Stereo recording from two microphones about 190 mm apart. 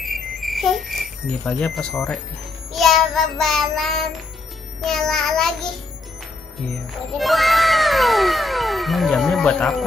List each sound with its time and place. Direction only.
0.0 s a sound: centre (ahead or behind)
2.7 s cat: centre (ahead or behind)
7.2 s cat: centre (ahead or behind)